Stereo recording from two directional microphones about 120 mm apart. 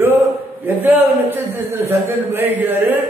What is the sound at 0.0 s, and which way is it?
A man's voice, 15° right (ahead or behind).